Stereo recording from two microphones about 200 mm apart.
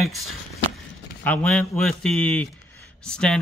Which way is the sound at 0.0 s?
Centre (ahead or behind).